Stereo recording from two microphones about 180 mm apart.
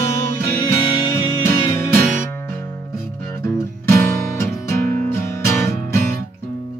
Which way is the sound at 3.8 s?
15° left (ahead or behind).